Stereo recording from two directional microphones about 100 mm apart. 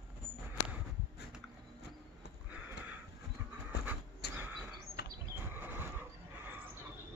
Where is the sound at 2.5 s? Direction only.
15° right (ahead or behind).